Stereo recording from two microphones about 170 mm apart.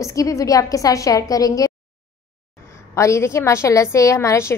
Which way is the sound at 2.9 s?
15° left (ahead or behind).